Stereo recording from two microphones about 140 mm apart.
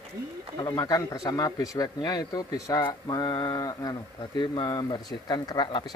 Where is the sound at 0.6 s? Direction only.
25° left (ahead or behind).